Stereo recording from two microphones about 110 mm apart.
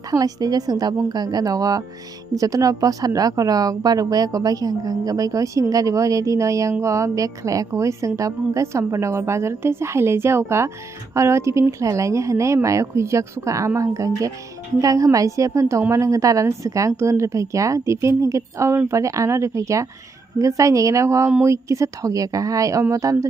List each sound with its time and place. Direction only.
0.1 s a woman's voice: 35° right (ahead or behind)